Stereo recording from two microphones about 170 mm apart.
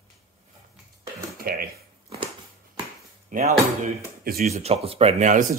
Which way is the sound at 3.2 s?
50° right (ahead or behind).